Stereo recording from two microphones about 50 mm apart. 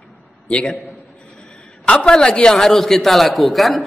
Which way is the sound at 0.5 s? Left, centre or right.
Left.